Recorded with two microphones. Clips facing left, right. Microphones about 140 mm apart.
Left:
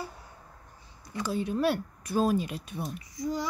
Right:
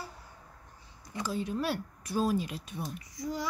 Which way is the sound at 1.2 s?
60° left (ahead or behind).